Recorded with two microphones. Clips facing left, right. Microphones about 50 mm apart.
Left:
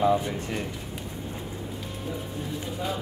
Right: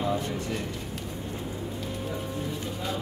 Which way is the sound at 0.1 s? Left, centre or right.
Left.